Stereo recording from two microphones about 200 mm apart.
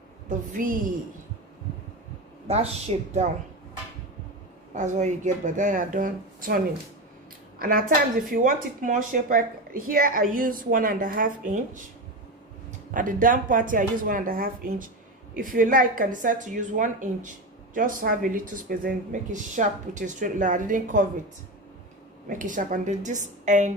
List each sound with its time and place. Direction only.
0.5 s a woman's voice: 40° right (ahead or behind)
2.4 s speech: 30° right (ahead or behind)
4.7 s a woman's voice: 35° right (ahead or behind)
12.9 s a woman's voice: 40° right (ahead or behind)
22.3 s speech: 40° right (ahead or behind)